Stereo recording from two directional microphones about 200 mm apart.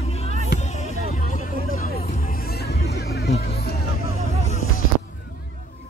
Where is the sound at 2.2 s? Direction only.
45° left (ahead or behind).